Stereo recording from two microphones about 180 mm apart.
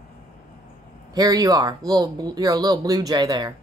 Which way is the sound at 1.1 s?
20° right (ahead or behind).